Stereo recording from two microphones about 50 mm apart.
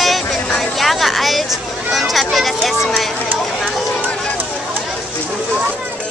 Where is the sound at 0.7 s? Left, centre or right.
Centre.